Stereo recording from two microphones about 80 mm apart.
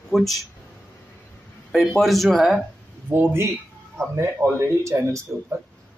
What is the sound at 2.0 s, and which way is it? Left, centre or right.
Speech, centre.